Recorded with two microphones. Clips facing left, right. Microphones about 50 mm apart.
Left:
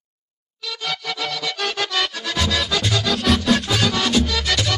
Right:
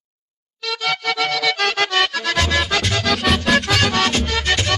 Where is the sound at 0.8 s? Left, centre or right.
Right.